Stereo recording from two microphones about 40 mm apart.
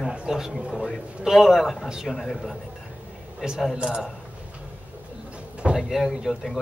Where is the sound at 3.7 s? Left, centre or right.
Centre.